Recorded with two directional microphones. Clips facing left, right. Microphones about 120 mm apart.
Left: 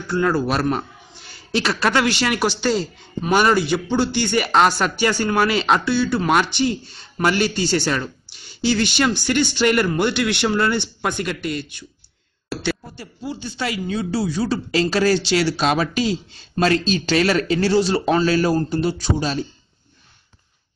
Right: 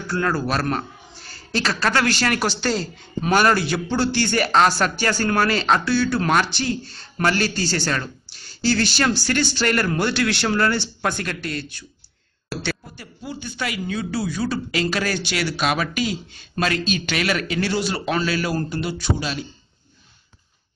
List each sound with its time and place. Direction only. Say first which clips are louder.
0.2 s speech: left 4 dB; 15° left (ahead or behind)
1.6 s a man's voice: left 2 dB; 20° left (ahead or behind)
12.9 s speech: left 3 dB; 30° left (ahead or behind)